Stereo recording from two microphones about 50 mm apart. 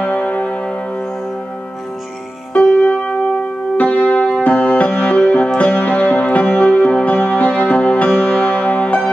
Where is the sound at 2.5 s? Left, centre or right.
Left.